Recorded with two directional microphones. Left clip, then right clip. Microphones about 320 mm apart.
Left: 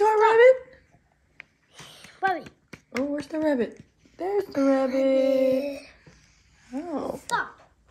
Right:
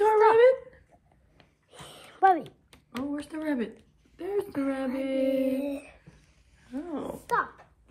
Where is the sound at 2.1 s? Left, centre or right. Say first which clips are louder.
Right 4 dB; centre.